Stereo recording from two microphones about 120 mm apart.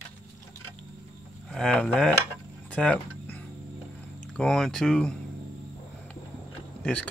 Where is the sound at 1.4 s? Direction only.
5° left (ahead or behind).